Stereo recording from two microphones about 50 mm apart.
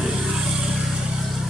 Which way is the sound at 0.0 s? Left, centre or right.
Centre.